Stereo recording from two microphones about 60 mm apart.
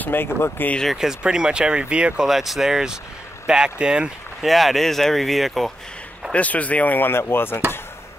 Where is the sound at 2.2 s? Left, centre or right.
Centre.